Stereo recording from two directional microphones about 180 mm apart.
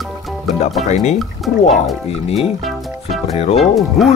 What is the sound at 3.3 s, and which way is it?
Speech, 35° left (ahead or behind).